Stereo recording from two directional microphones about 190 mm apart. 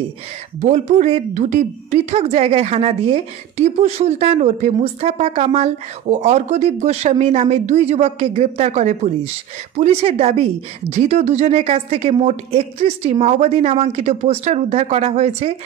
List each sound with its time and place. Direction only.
0.6 s speech: 35° right (ahead or behind)